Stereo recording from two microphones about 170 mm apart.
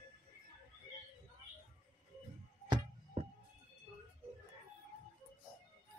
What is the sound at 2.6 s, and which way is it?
Music, 30° right (ahead or behind).